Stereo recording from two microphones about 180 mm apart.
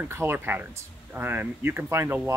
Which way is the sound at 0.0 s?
15° right (ahead or behind).